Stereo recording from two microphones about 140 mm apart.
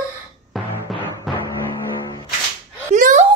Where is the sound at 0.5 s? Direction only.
Centre (ahead or behind).